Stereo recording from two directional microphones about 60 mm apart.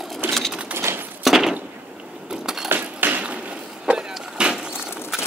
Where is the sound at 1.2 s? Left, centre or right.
Centre.